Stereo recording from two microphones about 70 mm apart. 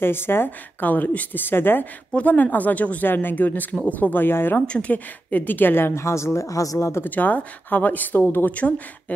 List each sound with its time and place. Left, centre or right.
0.0 s speech: left
4.6 s a woman's voice: centre; by 6.9 s left
7.1 s a woman's voice: left
8.5 s speech: left